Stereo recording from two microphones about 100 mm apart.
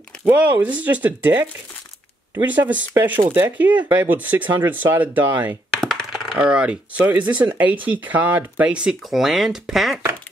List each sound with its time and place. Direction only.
0.2 s speech: 20° right (ahead or behind)
2.4 s speech: 15° right (ahead or behind)
5.7 s speech: 5° right (ahead or behind)